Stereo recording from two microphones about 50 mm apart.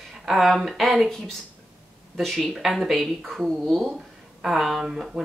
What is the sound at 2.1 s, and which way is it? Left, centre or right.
Speech, centre.